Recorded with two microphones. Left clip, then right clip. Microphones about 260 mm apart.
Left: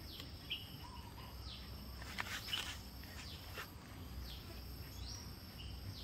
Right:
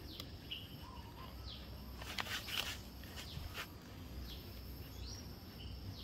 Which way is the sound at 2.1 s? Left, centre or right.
Right.